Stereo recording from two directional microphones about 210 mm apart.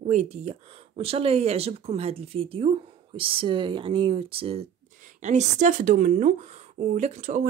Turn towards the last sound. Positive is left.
turn(degrees=-35)  # may be behind; listen again after turning